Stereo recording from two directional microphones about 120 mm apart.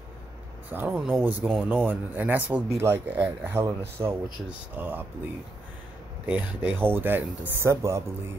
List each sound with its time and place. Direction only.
0.7 s speech: 15° right (ahead or behind)
6.6 s speech: 15° right (ahead or behind)